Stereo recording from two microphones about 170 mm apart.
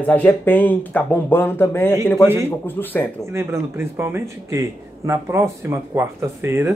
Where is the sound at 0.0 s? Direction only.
10° left (ahead or behind).